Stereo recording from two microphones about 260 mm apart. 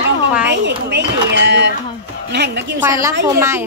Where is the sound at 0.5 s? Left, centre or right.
Right.